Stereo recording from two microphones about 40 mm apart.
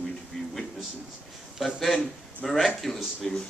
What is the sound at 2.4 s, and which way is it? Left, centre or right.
Speech, centre.